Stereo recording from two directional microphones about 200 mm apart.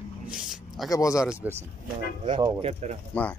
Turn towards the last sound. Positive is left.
turn(degrees=5)  # may be behind; listen again after turning